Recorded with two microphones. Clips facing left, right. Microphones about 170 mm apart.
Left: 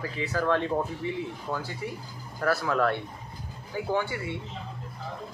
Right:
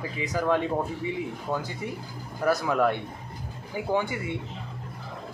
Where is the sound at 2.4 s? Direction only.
15° right (ahead or behind).